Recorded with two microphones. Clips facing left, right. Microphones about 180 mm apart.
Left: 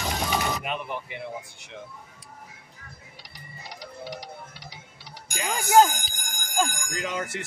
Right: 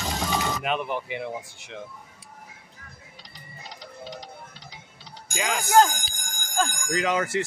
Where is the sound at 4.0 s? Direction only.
20° right (ahead or behind).